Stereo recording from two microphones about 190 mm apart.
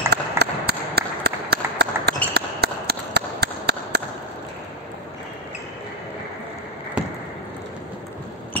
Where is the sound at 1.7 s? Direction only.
60° right (ahead or behind).